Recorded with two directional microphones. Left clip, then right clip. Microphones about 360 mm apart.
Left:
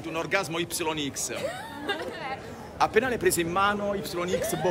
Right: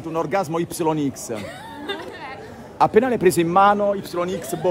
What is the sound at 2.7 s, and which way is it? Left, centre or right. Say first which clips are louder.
A man's voice: right 7 dB; centre.